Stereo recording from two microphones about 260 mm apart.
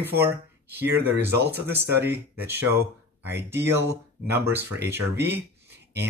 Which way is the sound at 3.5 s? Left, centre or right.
Centre.